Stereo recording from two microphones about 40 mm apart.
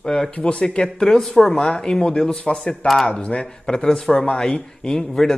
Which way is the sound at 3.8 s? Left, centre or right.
Centre.